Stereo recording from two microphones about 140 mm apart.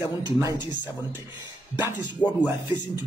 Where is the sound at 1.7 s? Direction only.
15° right (ahead or behind).